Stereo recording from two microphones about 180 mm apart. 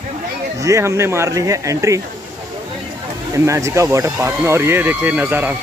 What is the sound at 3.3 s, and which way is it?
Speech, 15° right (ahead or behind).